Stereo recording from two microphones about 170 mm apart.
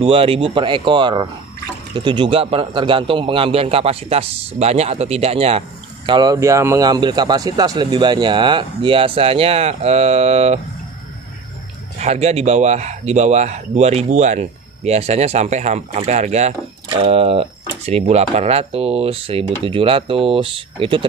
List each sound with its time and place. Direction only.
0.0 s speech: 35° right (ahead or behind)
6.0 s speech: 25° right (ahead or behind)
12.0 s speech: 40° right (ahead or behind)